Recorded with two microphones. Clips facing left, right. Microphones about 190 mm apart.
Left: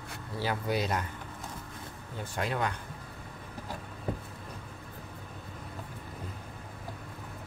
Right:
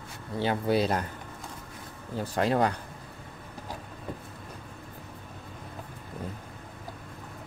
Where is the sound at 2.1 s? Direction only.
35° right (ahead or behind).